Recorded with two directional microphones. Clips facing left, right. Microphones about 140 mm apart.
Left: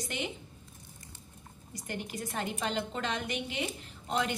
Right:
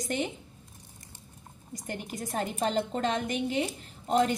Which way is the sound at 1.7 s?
45° right (ahead or behind).